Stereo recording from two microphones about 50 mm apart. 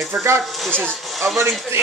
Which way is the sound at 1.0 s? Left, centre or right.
Centre.